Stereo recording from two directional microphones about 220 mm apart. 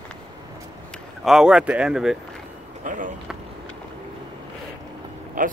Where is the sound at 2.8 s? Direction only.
35° right (ahead or behind).